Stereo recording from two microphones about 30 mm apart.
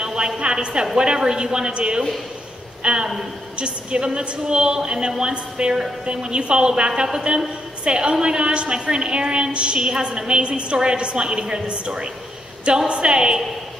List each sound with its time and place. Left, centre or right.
0.0 s a sound: right
0.4 s a woman's voice: right
1.7 s a woman's voice: right
7.0 s a woman's voice: right
7.2 s a woman's voice: right
11.6 s a woman's voice: right